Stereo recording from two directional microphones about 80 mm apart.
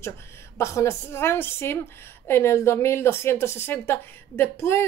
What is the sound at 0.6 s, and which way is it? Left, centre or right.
A woman's voice, left.